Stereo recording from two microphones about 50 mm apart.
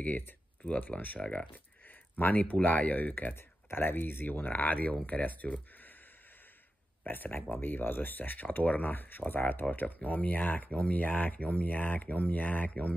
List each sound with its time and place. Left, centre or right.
0.7 s speech: left
3.7 s speech: left
7.1 s speech: left